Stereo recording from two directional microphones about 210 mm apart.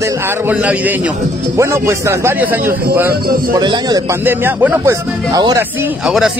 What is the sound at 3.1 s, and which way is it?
Speech, 45° right (ahead or behind).